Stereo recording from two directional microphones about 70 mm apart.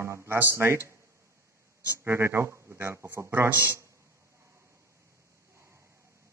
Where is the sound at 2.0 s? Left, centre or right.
Right.